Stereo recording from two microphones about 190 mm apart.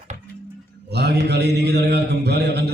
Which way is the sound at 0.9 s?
60° right (ahead or behind).